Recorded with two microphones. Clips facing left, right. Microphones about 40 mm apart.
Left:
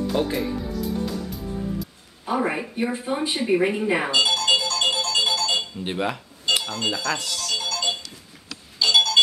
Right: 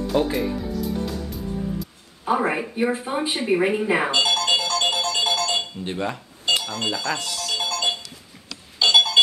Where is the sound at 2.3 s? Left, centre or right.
Centre.